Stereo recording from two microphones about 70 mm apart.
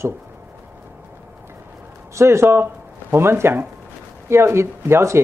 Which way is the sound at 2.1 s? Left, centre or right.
Right.